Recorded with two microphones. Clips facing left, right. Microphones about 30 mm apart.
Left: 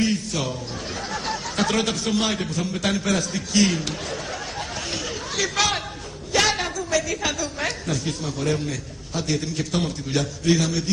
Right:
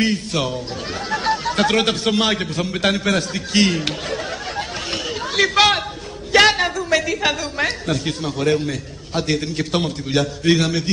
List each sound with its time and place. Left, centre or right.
0.0 s a man's voice: right
1.1 s a sound: right
1.7 s a man's voice: right
5.3 s chatter: right
6.3 s a sound: right
6.8 s a man's voice: right